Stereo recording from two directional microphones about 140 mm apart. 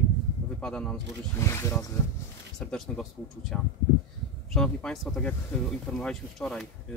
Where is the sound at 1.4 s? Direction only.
20° left (ahead or behind).